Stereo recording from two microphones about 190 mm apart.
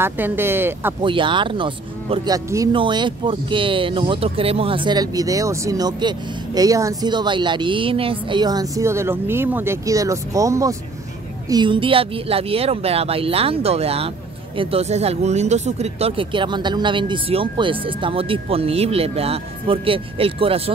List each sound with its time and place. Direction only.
0.0 s speech: 10° right (ahead or behind)
1.0 s speech: 25° right (ahead or behind)